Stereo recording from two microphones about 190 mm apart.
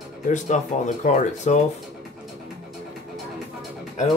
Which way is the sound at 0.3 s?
40° left (ahead or behind).